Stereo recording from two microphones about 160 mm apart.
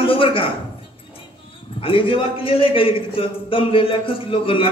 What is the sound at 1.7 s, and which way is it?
A man's voice, 35° left (ahead or behind).